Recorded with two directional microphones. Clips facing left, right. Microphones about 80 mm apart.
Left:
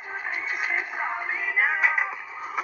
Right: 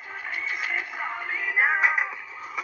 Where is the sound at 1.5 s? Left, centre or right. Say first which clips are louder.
Right 2 dB; centre.